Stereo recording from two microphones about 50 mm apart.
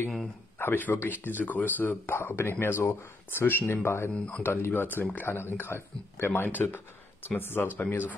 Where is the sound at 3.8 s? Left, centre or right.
Left.